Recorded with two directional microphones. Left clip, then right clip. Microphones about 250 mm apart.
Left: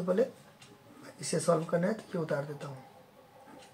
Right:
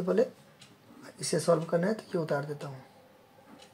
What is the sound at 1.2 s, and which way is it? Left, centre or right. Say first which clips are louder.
Speech: right 2 dB; right.